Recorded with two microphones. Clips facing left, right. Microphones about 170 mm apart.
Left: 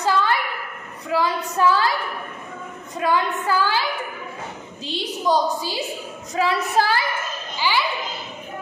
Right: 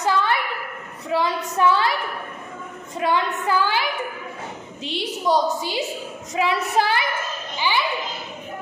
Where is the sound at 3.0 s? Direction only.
20° right (ahead or behind).